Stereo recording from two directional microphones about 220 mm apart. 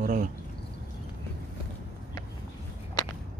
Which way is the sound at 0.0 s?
35° right (ahead or behind).